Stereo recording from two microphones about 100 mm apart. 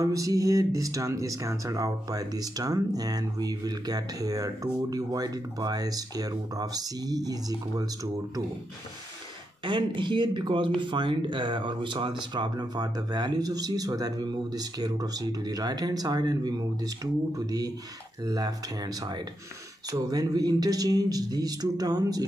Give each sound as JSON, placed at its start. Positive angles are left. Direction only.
{"t": 0.0, "sound": "speech", "side_deg": -35}
{"t": 9.7, "sound": "speech", "side_deg": -50}